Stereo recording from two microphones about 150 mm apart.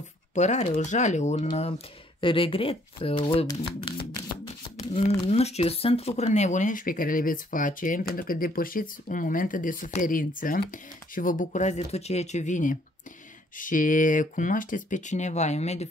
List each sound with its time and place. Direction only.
0.3 s speech: 50° left (ahead or behind); by 3.9 s 35° left (ahead or behind)
5.2 s speech: 45° left (ahead or behind)